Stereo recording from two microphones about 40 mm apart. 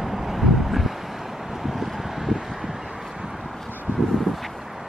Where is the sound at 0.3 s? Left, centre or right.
Centre.